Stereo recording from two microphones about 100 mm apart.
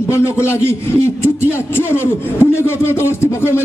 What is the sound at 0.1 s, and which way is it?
Speech, 25° left (ahead or behind).